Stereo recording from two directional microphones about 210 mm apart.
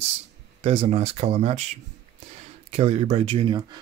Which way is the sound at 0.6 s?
30° right (ahead or behind).